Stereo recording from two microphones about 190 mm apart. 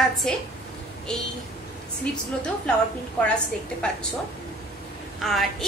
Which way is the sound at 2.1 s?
5° left (ahead or behind).